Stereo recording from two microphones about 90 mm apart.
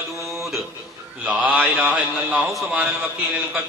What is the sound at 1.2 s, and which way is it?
A man's voice, 15° right (ahead or behind).